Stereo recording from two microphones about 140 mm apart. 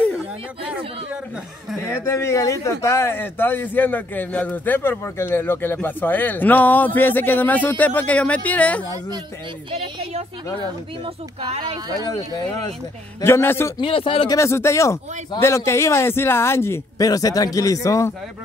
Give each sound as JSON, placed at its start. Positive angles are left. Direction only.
{"t": 1.8, "sound": "speech", "side_deg": 20}
{"t": 13.2, "sound": "speech", "side_deg": 15}
{"t": 13.7, "sound": "speech", "side_deg": 40}
{"t": 14.3, "sound": "speech", "side_deg": 20}